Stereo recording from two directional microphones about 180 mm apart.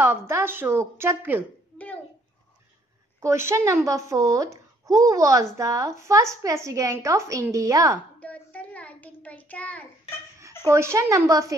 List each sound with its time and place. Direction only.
0.0 s speech: 15° right (ahead or behind)
3.2 s speech: 15° right (ahead or behind)
8.2 s child singing: 10° left (ahead or behind)
10.6 s speech: 15° right (ahead or behind)